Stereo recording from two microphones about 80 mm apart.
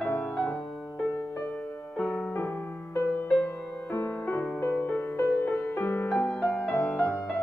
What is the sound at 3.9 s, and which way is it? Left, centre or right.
Music, left.